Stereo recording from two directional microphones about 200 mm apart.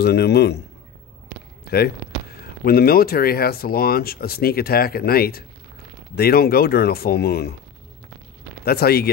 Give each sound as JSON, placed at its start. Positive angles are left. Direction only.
{"t": 0.0, "sound": "a man's voice", "side_deg": 55}
{"t": 2.6, "sound": "speech", "side_deg": 50}
{"t": 8.6, "sound": "speech", "side_deg": 50}